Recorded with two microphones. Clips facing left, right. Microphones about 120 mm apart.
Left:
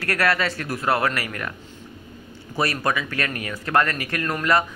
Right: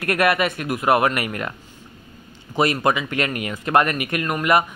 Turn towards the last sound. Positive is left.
turn(degrees=-15)  # may be behind; listen again after turning